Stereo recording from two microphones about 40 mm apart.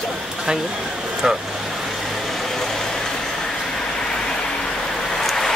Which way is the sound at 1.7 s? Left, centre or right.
Centre.